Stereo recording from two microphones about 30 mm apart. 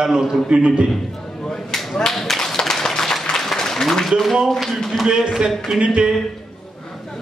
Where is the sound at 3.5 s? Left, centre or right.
Centre.